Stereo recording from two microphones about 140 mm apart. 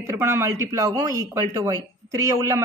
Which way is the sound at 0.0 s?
20° right (ahead or behind).